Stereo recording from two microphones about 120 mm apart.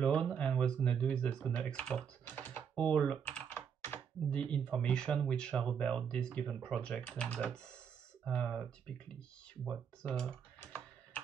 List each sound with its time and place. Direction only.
0.0 s speech: 10° left (ahead or behind)
3.4 s computer keyboard: 20° left (ahead or behind)
4.4 s speech: 5° left (ahead or behind)
10.0 s speech: 5° left (ahead or behind)